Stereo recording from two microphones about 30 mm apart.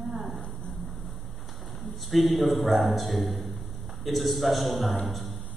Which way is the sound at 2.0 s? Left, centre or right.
Centre.